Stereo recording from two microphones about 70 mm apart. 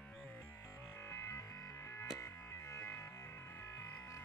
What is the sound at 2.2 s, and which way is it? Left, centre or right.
Music, left.